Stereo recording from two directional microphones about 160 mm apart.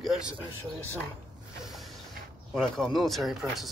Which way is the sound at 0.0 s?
Centre (ahead or behind).